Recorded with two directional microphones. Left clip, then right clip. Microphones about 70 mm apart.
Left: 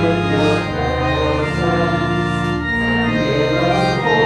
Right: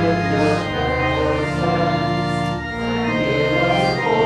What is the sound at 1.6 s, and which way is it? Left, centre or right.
Organ, left.